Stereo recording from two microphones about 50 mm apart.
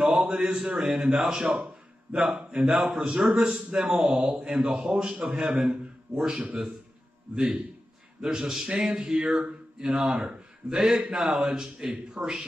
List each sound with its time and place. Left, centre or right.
0.1 s a man's voice: centre
4.3 s a man's voice: right
4.6 s a man's voice: centre